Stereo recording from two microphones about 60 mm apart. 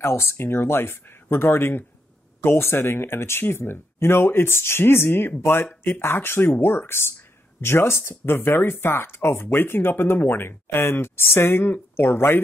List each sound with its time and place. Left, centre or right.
0.0 s speech: left